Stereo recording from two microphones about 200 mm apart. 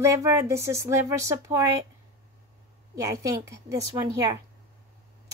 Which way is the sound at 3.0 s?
15° right (ahead or behind).